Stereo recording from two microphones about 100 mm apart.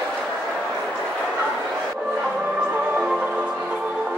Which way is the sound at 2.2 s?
10° right (ahead or behind).